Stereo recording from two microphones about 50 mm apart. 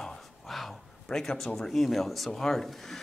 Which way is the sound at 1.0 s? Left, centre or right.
Centre.